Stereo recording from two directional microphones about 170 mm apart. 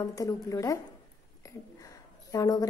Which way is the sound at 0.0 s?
20° left (ahead or behind).